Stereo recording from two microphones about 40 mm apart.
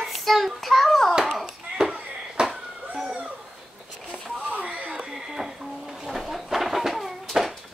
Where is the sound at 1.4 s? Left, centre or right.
Centre.